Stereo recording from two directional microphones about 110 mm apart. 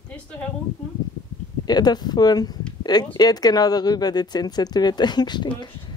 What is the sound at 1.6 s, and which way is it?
Speech, 40° left (ahead or behind).